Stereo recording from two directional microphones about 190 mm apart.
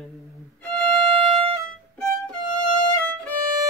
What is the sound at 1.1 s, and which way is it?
Music, 30° right (ahead or behind).